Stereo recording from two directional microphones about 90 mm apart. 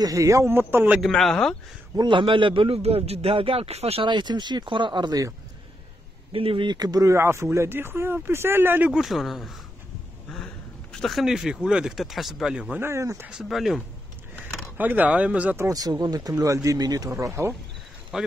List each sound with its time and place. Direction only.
0.0 s speech: 35° right (ahead or behind); by 1.0 s 20° right (ahead or behind)
1.0 s speech: 5° left (ahead or behind)
2.0 s a man's voice: 65° right (ahead or behind)
6.3 s speech: 85° right; by 8.9 s 20° right (ahead or behind)
8.9 s speech: centre (ahead or behind)
12.7 s speech: 30° right (ahead or behind)
13.3 s speech: 5° right (ahead or behind)
14.8 s speech: 20° right (ahead or behind)
15.7 s speech: 45° right (ahead or behind)
18.1 s speech: 5° right (ahead or behind)